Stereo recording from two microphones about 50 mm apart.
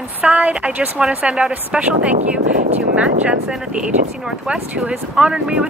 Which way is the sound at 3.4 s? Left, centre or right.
Centre.